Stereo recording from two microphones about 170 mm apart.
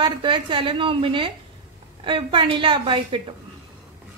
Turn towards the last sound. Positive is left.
turn(degrees=-30)  # may be behind; listen again after turning